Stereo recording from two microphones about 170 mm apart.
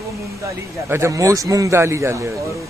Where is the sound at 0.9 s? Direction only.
15° right (ahead or behind).